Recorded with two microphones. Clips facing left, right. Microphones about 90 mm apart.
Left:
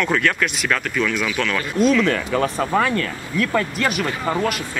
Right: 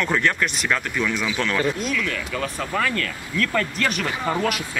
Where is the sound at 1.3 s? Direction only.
25° right (ahead or behind).